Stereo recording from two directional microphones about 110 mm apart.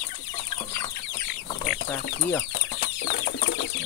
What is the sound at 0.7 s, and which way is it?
Chicken, 30° left (ahead or behind).